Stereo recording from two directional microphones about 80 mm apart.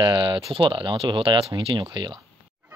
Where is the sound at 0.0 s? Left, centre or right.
Right.